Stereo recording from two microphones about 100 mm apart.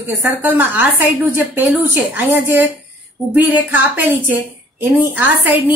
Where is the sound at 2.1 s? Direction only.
20° right (ahead or behind).